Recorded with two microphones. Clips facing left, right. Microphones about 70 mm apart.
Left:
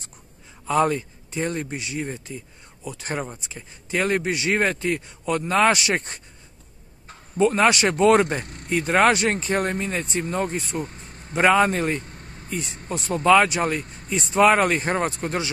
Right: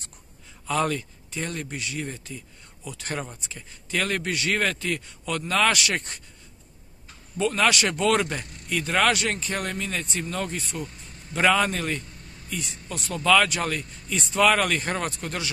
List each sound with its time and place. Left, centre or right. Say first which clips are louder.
0.7 s speech: left 5 dB; left
11.3 s speech: left 4 dB; left